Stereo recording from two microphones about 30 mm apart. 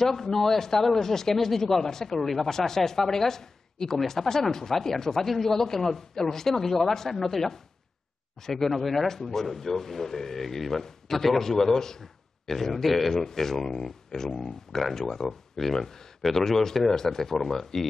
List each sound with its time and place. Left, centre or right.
0.0 s speech: centre